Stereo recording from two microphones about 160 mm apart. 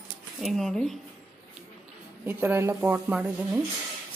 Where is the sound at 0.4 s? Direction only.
Centre (ahead or behind).